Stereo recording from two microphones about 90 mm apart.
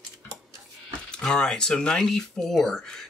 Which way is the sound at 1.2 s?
5° left (ahead or behind).